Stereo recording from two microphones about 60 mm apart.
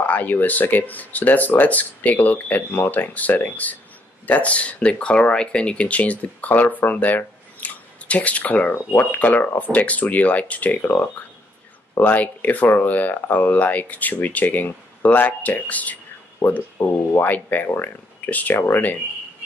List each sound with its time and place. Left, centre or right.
0.0 s speech: left
16.4 s speech: left